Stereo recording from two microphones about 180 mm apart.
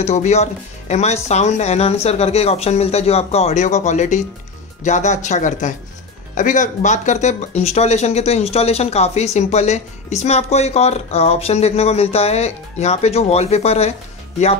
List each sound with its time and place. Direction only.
0.0 s speech: 40° left (ahead or behind)